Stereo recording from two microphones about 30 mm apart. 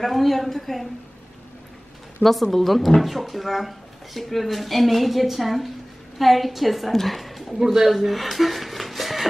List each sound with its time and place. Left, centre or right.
0.0 s speech: centre
2.2 s speech: right
2.5 s a woman's voice: centre
7.5 s speech: centre
7.9 s a sound: centre